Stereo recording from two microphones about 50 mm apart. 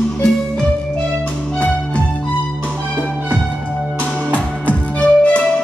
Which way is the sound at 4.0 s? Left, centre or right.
Left.